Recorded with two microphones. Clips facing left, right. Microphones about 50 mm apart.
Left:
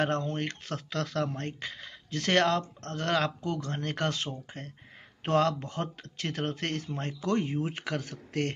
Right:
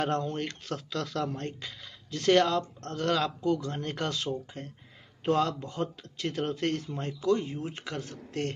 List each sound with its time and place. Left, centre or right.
0.0 s speech: left
5.2 s speech: left
7.8 s speech: left
8.3 s a man's voice: left